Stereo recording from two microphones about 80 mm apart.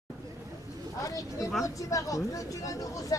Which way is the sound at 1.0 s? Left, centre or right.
Left.